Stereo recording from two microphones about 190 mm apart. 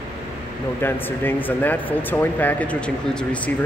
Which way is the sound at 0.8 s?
10° left (ahead or behind).